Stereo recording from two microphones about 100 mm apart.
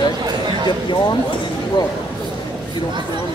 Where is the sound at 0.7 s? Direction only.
50° left (ahead or behind).